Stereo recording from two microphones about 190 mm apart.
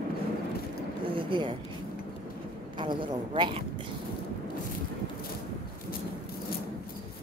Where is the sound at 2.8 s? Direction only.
25° right (ahead or behind).